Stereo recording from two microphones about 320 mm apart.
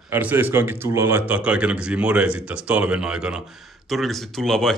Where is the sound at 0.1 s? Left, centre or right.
Centre.